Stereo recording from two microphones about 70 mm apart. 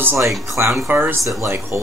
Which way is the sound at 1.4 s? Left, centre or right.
Right.